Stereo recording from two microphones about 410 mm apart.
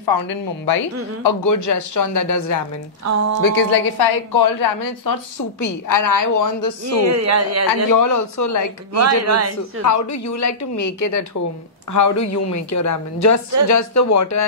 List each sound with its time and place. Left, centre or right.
0.0 s speech: left
1.2 s a woman's voice: left
3.0 s speech: right
3.4 s a woman's voice: left
7.1 s speech: right
7.9 s a woman's voice: left
8.9 s speech: right
9.8 s a woman's voice: left